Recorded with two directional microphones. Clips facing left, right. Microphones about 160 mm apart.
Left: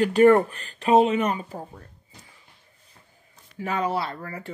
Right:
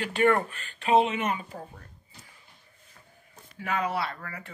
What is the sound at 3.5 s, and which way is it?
Speech, 30° left (ahead or behind).